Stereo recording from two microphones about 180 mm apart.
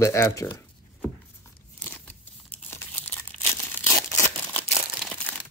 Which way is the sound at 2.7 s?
10° left (ahead or behind).